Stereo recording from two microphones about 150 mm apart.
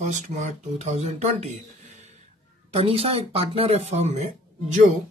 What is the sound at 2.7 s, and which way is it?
Speech, 40° right (ahead or behind).